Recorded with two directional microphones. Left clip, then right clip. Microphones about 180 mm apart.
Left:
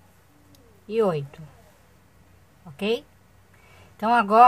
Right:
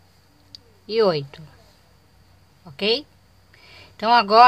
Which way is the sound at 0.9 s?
20° right (ahead or behind).